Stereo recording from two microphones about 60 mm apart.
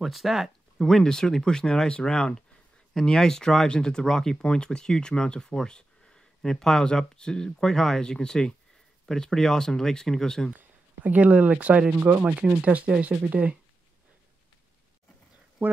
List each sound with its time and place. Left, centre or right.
0.0 s speech: centre
0.7 s speech: centre
11.1 s speech: right